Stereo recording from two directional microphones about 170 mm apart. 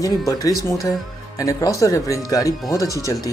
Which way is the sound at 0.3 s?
20° left (ahead or behind).